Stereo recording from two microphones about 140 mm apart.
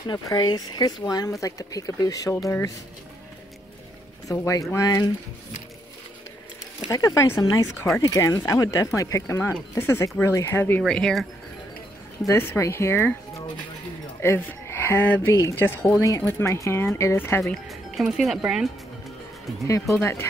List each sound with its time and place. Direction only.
0.0 s speech: 30° left (ahead or behind)
4.3 s speech: 25° left (ahead or behind)
6.9 s speech: 20° left (ahead or behind)
10.8 s speech: 5° left (ahead or behind)
12.3 s speech: 15° left (ahead or behind)
14.2 s speech: 15° left (ahead or behind)
17.4 s speech: centre (ahead or behind)
19.6 s speech: 20° left (ahead or behind)